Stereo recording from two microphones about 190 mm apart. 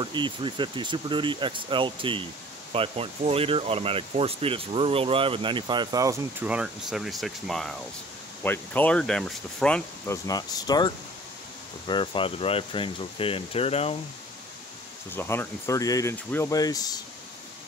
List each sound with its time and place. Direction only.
0.0 s speech: 25° right (ahead or behind)
6.4 s speech: 5° right (ahead or behind)
10.2 s speech: 20° left (ahead or behind)
11.9 s speech: 25° left (ahead or behind)
15.1 s speech: 10° left (ahead or behind)